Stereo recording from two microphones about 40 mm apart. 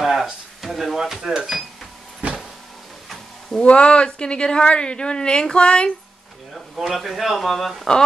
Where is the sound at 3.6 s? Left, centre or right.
Left.